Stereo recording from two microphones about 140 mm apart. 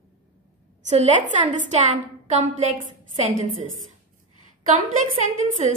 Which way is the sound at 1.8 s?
55° right (ahead or behind).